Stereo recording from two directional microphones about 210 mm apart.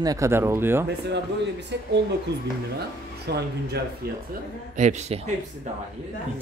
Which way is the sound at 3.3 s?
50° right (ahead or behind).